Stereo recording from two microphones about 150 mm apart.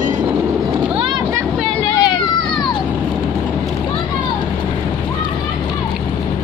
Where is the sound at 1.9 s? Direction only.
30° left (ahead or behind).